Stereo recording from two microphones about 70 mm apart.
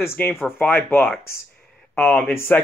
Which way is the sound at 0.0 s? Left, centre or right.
Left.